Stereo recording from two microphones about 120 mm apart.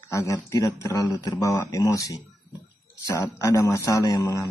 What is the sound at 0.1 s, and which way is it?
Speech, 25° left (ahead or behind).